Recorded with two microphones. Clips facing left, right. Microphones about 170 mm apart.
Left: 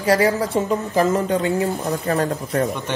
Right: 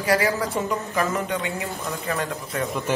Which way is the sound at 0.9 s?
35° left (ahead or behind).